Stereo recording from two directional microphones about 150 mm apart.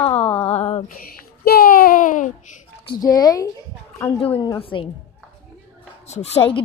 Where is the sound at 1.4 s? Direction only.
80° left; by 2.3 s 60° left (ahead or behind).